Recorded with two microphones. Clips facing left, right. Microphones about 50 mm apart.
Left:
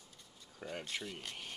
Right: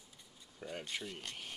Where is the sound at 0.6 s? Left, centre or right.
Centre.